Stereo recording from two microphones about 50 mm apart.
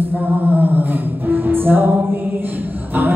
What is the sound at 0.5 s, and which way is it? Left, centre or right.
Humming, right.